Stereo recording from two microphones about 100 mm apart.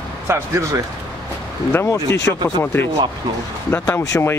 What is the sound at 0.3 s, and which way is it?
Speech, 30° right (ahead or behind).